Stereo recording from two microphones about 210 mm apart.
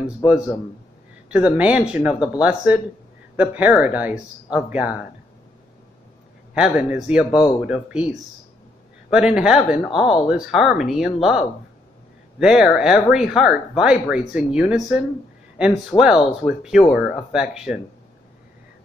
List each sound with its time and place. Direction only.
1.3 s speech: 5° right (ahead or behind)
6.5 s speech: 5° right (ahead or behind)
7.2 s speech: 20° left (ahead or behind)
7.6 s speech: 5° right (ahead or behind)